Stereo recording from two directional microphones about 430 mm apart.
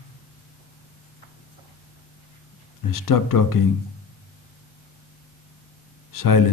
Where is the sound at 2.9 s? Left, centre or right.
Left.